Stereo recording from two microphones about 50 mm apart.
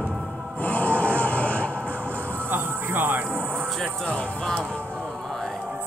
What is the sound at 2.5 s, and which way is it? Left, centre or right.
Music, right.